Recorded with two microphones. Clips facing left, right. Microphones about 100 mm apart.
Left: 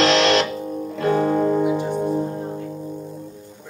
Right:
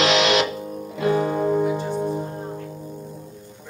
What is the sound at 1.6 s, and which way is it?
Music, 15° left (ahead or behind).